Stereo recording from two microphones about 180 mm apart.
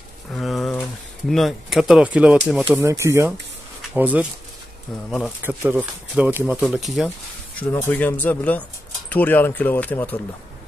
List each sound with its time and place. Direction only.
0.3 s pigeon: centre (ahead or behind)
1.3 s speech: centre (ahead or behind)
5.4 s speech: 10° right (ahead or behind)
7.7 s speech: 10° left (ahead or behind)